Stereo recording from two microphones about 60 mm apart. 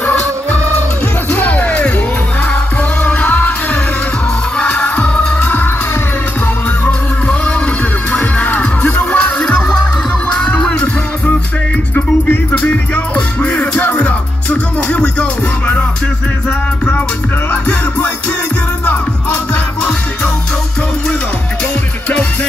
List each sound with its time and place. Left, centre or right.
0.0 s music: left
3.0 s music: left
4.6 s music: centre
6.8 s music: left
9.4 s music: centre
12.5 s music: left
17.5 s music: left